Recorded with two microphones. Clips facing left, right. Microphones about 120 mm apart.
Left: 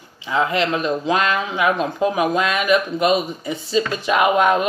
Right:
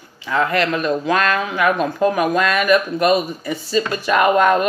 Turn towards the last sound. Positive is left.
turn(degrees=15)  # may be behind; listen again after turning